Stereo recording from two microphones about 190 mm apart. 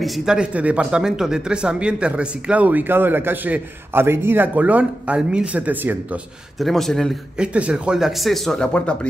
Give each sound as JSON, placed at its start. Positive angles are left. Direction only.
{"t": 0.0, "sound": "speech", "side_deg": 0}
{"t": 6.6, "sound": "speech", "side_deg": 0}